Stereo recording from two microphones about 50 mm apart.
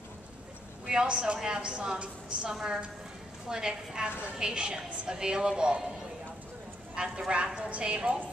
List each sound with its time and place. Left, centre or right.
0.8 s a woman's voice: centre
2.5 s a woman's voice: centre
7.0 s a woman's voice: centre